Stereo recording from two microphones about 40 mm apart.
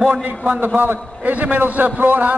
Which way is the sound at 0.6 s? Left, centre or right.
Right.